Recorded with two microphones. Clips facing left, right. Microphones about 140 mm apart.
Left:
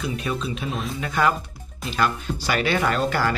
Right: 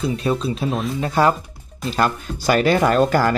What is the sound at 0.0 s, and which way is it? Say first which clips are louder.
Speech: right 6 dB; 35° right (ahead or behind).